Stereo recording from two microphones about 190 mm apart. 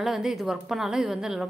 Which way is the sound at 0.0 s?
Centre (ahead or behind).